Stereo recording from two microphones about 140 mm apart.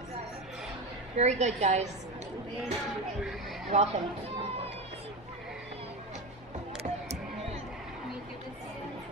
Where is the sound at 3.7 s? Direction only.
55° right (ahead or behind).